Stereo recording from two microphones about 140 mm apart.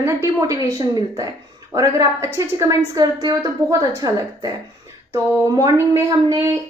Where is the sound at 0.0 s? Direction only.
20° right (ahead or behind).